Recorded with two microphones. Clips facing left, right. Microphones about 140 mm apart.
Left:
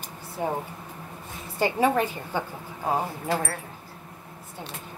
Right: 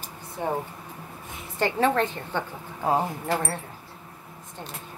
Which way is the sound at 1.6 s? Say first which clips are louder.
Even; 10° left (ahead or behind).